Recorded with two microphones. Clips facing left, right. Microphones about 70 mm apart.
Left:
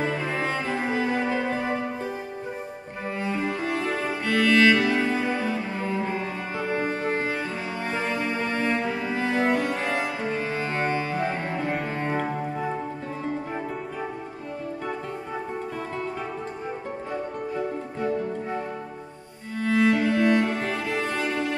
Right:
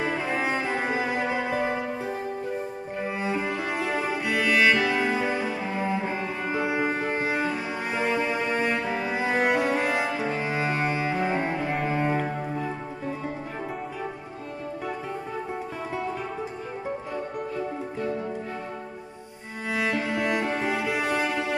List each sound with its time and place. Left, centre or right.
0.0 s music: centre
3.3 s music: centre
11.2 s cello: centre
19.6 s music: centre